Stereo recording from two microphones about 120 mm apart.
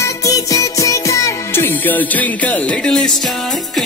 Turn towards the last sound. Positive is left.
turn(degrees=5)  # may be behind; listen again after turning